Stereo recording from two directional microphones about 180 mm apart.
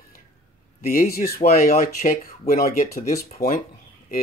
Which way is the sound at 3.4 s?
55° left (ahead or behind).